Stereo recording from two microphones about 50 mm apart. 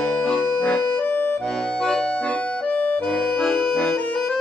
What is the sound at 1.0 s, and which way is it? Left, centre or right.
Accordion, left.